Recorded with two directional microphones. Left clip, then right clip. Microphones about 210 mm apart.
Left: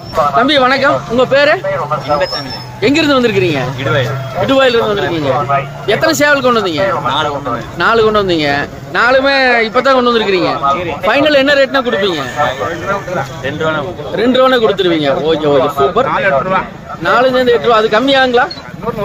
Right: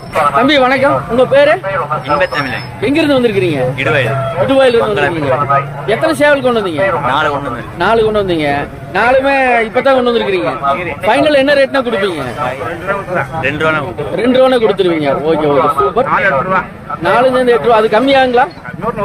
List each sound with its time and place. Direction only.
0.4 s speech: 5° left (ahead or behind)
2.8 s a man's voice: 5° left (ahead or behind)
7.8 s a man's voice: 5° left (ahead or behind)
13.5 s a man's voice: 5° right (ahead or behind)
16.1 s speech: 15° left (ahead or behind)
17.0 s a man's voice: 5° left (ahead or behind)